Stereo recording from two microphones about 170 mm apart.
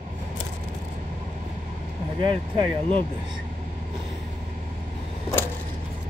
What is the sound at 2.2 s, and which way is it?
Speech, 30° right (ahead or behind).